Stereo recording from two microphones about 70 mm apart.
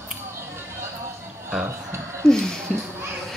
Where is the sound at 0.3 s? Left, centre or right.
Right.